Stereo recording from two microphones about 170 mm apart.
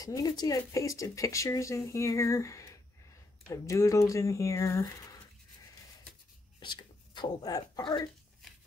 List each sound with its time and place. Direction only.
0.0 s speech: 20° left (ahead or behind)
6.6 s speech: 30° left (ahead or behind)